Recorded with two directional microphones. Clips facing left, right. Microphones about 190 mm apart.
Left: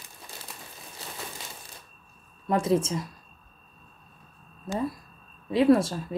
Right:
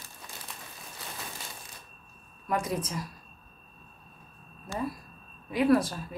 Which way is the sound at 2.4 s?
30° left (ahead or behind).